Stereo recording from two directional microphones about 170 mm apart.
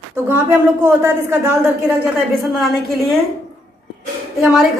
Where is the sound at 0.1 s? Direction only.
10° right (ahead or behind).